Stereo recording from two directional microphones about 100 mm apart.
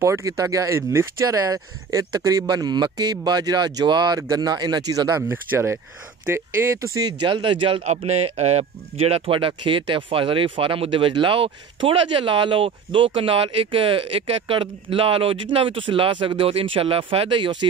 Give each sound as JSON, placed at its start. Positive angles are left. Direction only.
{"t": 0.0, "sound": "speech", "side_deg": -30}
{"t": 4.2, "sound": "speech", "side_deg": -35}
{"t": 5.3, "sound": "speech", "side_deg": -25}
{"t": 9.5, "sound": "speech", "side_deg": -55}